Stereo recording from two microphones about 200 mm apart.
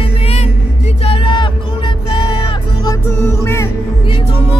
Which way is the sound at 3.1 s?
10° left (ahead or behind).